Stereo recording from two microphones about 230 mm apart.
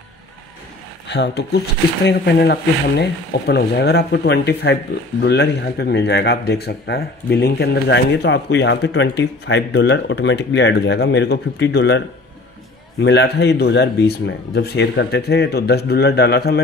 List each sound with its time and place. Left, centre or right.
1.0 s speech: left
13.0 s speech: left